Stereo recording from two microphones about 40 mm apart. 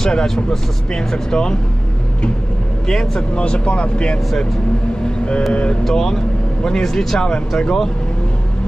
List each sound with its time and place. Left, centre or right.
0.0 s speech: centre
2.9 s speech: centre
3.3 s speech: left
5.5 s speech: left
5.9 s speech: centre